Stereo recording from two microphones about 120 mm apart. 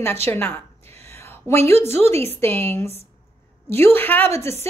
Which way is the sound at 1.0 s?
20° left (ahead or behind).